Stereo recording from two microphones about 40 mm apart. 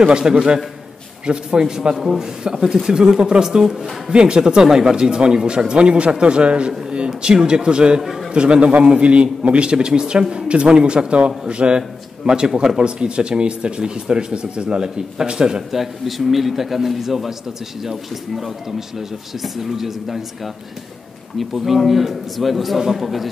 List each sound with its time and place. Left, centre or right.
0.0 s speech: right
2.0 s speech: centre; by 8.0 s right
8.0 s a man's voice: centre
8.3 s speech: right
15.7 s a man's voice: centre
21.4 s a man's voice: centre